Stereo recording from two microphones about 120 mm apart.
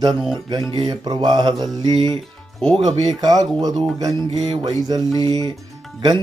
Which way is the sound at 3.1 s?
35° right (ahead or behind).